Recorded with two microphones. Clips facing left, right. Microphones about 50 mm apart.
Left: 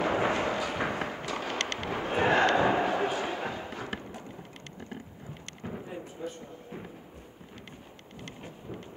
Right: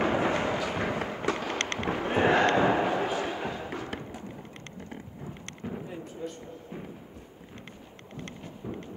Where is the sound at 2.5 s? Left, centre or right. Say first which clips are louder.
Right 1 dB; centre.